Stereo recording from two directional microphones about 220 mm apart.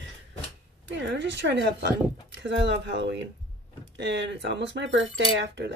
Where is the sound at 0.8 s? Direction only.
55° right (ahead or behind).